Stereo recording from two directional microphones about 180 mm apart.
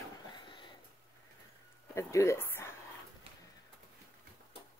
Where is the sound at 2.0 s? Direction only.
15° left (ahead or behind).